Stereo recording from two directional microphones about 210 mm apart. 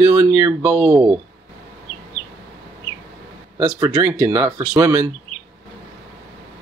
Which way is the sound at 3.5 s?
15° right (ahead or behind).